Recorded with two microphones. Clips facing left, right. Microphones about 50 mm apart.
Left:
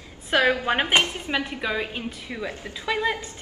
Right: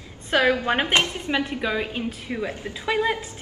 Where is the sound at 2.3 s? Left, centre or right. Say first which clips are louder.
Right 3 dB; centre.